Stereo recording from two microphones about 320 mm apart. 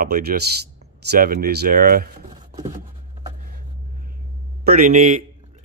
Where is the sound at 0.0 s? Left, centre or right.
Right.